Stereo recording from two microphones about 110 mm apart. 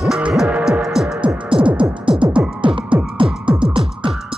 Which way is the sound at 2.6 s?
50° right (ahead or behind).